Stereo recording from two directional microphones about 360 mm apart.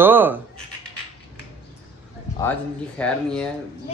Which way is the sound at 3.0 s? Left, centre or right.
Centre.